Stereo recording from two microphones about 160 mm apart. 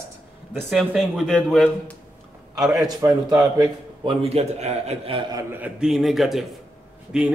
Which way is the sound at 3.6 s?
35° right (ahead or behind).